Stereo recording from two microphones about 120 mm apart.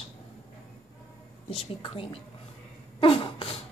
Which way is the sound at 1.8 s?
50° left (ahead or behind).